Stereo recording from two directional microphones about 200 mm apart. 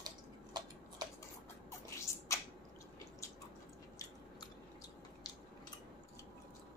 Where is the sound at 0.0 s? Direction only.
20° right (ahead or behind).